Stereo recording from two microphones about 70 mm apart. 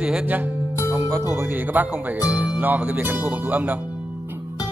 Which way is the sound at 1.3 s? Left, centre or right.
Right.